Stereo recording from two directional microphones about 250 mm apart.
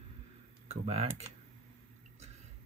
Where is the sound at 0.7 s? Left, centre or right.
Right.